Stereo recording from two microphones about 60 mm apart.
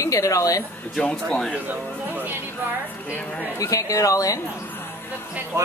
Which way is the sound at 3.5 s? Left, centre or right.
Left.